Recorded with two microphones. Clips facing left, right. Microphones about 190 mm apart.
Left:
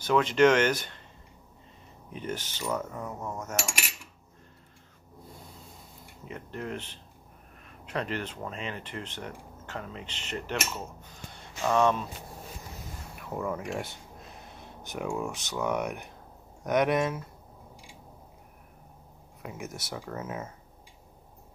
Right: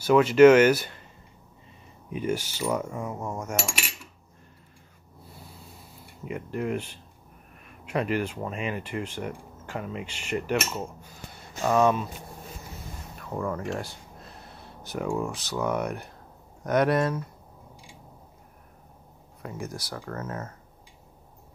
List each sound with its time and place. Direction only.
0.0 s speech: 10° right (ahead or behind)
2.1 s speech: 10° right (ahead or behind)
6.2 s speech: 10° right (ahead or behind)
7.6 s a sound: 10° right (ahead or behind)
8.5 s speech: 10° right (ahead or behind)
11.0 s a sound: 10° right (ahead or behind)
11.6 s speech: 5° right (ahead or behind)
13.1 s a sound: 5° left (ahead or behind)
15.0 s speech: centre (ahead or behind)
19.4 s speech: 5° left (ahead or behind)
19.7 s speech: 25° left (ahead or behind)
20.0 s speech: 10° left (ahead or behind)